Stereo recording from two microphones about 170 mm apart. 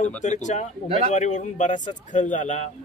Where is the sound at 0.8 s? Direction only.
35° right (ahead or behind).